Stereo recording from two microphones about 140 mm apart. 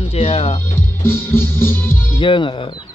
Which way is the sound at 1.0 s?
15° left (ahead or behind).